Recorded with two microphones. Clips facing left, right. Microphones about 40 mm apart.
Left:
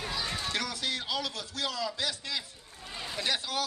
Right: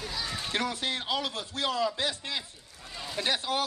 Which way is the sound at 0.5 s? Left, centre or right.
Right.